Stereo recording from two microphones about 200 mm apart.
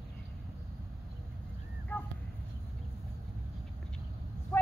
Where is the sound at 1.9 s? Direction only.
10° left (ahead or behind).